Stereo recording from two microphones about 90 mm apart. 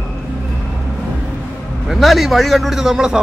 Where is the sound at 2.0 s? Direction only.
Centre (ahead or behind).